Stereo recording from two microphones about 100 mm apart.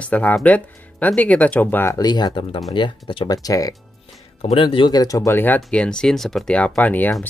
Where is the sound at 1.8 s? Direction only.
40° left (ahead or behind); by 3.2 s 55° left (ahead or behind).